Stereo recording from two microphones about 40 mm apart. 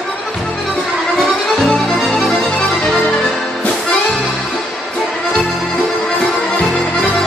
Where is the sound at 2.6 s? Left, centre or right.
Centre.